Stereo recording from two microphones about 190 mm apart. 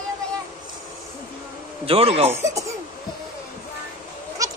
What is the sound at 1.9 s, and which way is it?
Speech, 30° right (ahead or behind).